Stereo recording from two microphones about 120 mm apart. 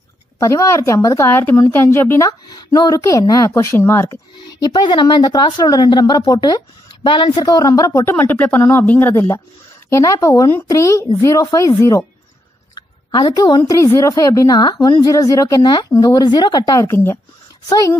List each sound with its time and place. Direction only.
0.4 s a woman's voice: 25° left (ahead or behind)
4.5 s a woman's voice: 35° left (ahead or behind)
13.1 s speech: 30° left (ahead or behind)
16.8 s a woman's voice: 20° left (ahead or behind)